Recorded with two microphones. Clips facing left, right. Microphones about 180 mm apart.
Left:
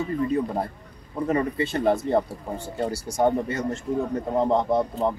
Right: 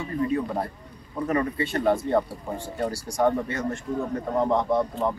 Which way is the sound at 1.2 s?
25° left (ahead or behind).